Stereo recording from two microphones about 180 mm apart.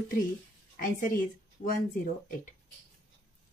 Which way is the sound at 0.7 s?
50° left (ahead or behind).